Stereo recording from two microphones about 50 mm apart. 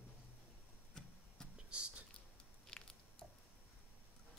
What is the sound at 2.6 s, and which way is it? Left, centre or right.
Biting, centre.